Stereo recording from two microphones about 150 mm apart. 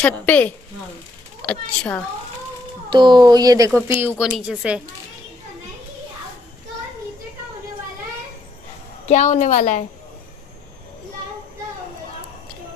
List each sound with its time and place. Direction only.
0.0 s speech: 10° left (ahead or behind)
2.9 s speech: 30° right (ahead or behind)
4.2 s speech: 5° right (ahead or behind)
9.0 s a woman's voice: 50° left (ahead or behind)